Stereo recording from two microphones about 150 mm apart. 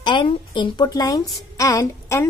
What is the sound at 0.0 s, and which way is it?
A woman's voice, 35° left (ahead or behind).